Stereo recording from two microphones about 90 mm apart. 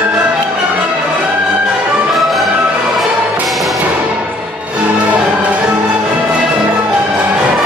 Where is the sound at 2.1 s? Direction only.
Centre (ahead or behind).